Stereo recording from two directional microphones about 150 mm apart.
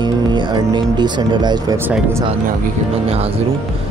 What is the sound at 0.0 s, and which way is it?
Speech, 30° right (ahead or behind).